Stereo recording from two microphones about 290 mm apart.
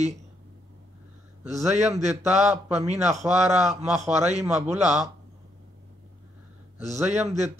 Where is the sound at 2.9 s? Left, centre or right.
Right.